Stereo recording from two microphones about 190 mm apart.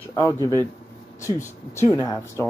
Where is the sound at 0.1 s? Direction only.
15° left (ahead or behind).